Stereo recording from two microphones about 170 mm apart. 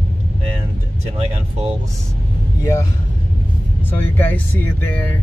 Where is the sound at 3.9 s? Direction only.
10° left (ahead or behind).